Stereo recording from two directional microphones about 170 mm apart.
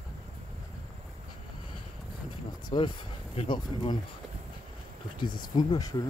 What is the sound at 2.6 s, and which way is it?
Speech, 25° left (ahead or behind).